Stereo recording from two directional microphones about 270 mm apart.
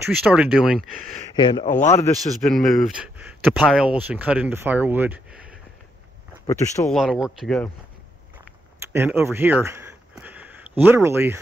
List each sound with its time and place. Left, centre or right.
0.0 s speech: centre
1.3 s speech: centre
1.7 s speech: left
2.4 s speech: centre
6.4 s speech: centre
7.0 s speech: centre
8.9 s speech: centre